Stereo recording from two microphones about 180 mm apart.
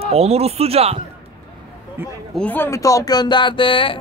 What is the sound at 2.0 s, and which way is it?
Speech, 15° right (ahead or behind).